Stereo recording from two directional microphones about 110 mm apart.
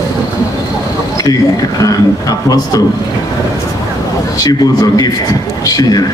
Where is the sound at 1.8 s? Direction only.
35° left (ahead or behind).